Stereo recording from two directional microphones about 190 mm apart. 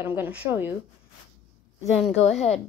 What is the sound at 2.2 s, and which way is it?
Speech, 35° left (ahead or behind).